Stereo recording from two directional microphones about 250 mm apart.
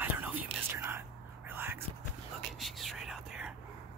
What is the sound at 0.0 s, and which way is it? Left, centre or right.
Whispering, centre.